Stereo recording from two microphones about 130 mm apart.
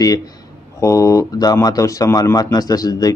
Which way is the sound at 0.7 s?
25° left (ahead or behind).